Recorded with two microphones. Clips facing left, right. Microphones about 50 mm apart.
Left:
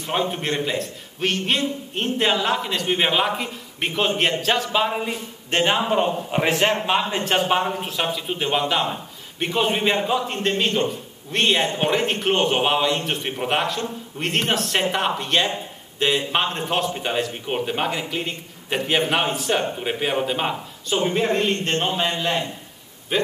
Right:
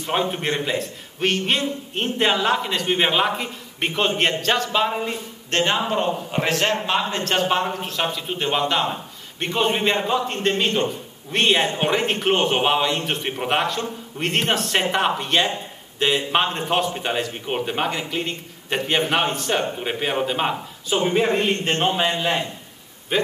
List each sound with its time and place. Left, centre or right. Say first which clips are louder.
0.0 s a man's voice: right 1 dB; centre